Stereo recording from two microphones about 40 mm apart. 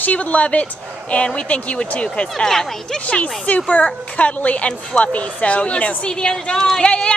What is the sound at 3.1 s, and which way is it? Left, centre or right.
Speech, left.